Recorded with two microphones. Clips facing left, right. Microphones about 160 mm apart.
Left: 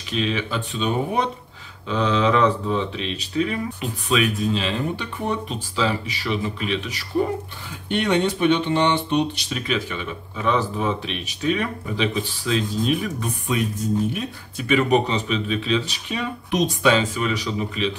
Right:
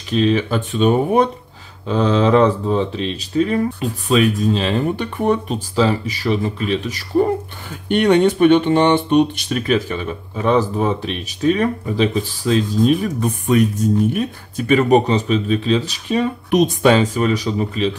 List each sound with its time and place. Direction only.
0.1 s speech: 40° right (ahead or behind)
1.9 s speech: 40° right (ahead or behind)
14.7 s speech: 40° right (ahead or behind)
16.4 s speech: 50° right (ahead or behind)